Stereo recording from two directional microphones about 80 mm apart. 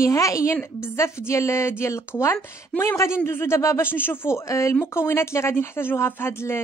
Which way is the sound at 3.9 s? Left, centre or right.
Left.